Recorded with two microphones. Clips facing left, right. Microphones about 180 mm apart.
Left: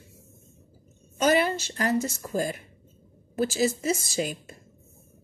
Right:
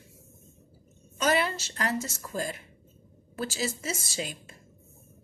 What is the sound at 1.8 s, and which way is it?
Speech, 35° left (ahead or behind).